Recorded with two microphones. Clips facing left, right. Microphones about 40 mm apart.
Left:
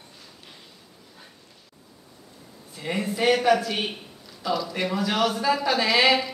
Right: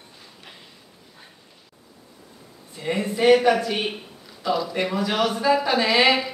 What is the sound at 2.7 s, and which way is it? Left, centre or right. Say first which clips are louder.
Speech: right 3 dB; centre.